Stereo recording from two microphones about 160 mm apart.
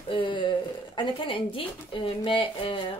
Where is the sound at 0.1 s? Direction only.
30° left (ahead or behind).